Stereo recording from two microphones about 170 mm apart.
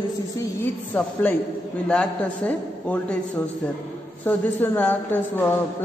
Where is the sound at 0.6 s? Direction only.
10° left (ahead or behind).